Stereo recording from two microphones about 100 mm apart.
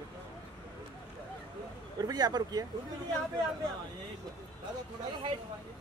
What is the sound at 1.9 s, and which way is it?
Speech, 40° right (ahead or behind).